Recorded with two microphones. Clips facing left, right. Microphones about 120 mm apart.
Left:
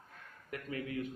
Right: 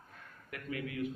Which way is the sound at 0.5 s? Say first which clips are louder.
Left 1 dB; 30° left (ahead or behind).